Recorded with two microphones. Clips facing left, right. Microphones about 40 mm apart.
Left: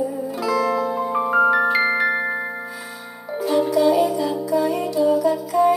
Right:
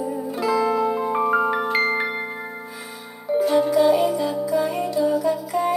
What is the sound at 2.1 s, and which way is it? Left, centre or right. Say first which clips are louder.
Music: left 6 dB; centre.